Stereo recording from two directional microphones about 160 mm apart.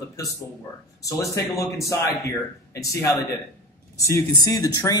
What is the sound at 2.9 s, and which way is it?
A man's voice, 20° left (ahead or behind).